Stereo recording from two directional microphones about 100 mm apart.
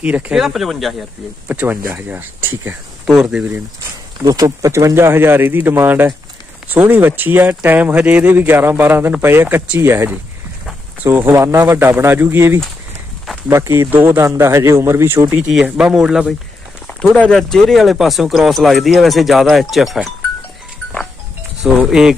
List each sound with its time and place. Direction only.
0.0 s speech: 15° right (ahead or behind)
0.4 s speech: centre (ahead or behind)
1.5 s speech: 20° right (ahead or behind)
3.1 s speech: 5° right (ahead or behind)
4.2 s speech: 40° right (ahead or behind)
15.4 s speech: 10° right (ahead or behind)
16.8 s speech: 15° left (ahead or behind)
21.8 s speech: 5° right (ahead or behind)